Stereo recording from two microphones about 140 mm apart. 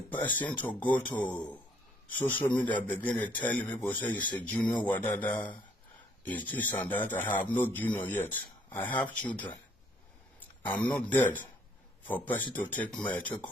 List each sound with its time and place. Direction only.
0.2 s speech: 10° left (ahead or behind)
10.7 s speech: 10° left (ahead or behind)